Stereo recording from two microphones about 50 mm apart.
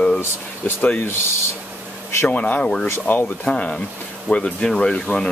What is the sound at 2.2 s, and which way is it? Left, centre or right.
Speech, left.